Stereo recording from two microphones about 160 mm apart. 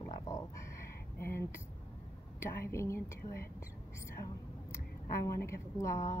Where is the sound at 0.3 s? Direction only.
20° left (ahead or behind).